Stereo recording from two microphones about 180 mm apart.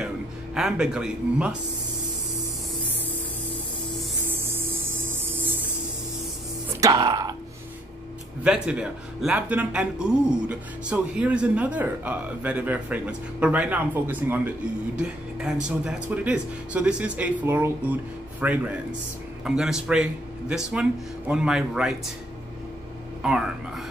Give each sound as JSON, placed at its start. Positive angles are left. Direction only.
{"t": 0.6, "sound": "speech", "side_deg": -5}
{"t": 4.3, "sound": "music", "side_deg": -10}
{"t": 5.0, "sound": "a sound", "side_deg": -10}
{"t": 6.8, "sound": "music", "side_deg": -20}
{"t": 8.5, "sound": "a man's voice", "side_deg": -5}
{"t": 23.2, "sound": "speech", "side_deg": -5}